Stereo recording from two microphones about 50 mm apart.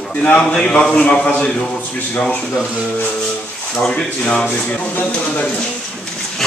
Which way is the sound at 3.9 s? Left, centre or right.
Left.